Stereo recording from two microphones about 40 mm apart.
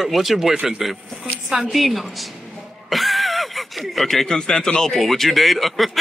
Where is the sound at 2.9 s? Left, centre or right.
Centre.